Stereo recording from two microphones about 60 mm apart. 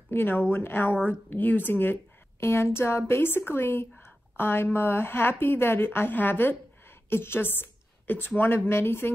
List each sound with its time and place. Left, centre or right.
0.1 s speech: left
1.0 s speech: left
2.4 s a woman's voice: left